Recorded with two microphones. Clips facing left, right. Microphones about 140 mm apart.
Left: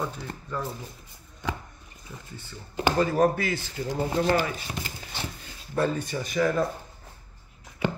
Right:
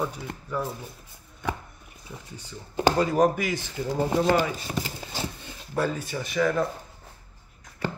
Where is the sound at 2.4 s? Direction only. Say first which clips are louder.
Right 3 dB; 15° right (ahead or behind).